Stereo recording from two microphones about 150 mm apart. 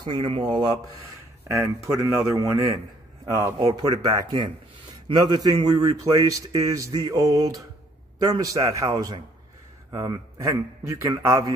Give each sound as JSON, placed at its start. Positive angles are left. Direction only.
{"t": 0.0, "sound": "speech", "side_deg": -35}
{"t": 1.5, "sound": "speech", "side_deg": -20}